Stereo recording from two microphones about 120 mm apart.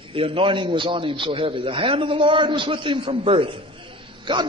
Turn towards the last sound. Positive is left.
turn(degrees=-40)  # may be behind; listen again after turning